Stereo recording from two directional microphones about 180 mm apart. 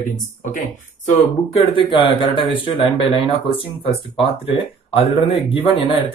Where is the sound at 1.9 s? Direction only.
30° left (ahead or behind).